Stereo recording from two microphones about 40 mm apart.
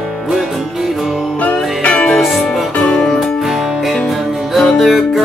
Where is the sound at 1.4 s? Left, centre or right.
Left.